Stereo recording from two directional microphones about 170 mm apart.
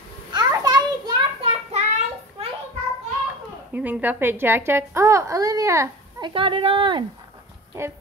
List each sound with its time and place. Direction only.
0.3 s a sound: 25° right (ahead or behind); by 2.4 s 40° right (ahead or behind)
3.7 s speech: 10° right (ahead or behind); by 7.1 s 30° right (ahead or behind)
7.7 s speech: 15° right (ahead or behind)